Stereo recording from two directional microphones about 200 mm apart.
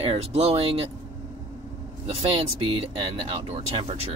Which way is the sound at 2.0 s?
25° right (ahead or behind).